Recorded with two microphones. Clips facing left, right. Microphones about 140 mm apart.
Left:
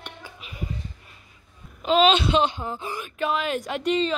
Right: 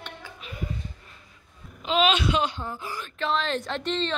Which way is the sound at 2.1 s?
25° left (ahead or behind).